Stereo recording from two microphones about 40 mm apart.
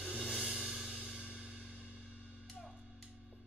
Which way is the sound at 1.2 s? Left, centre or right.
Right.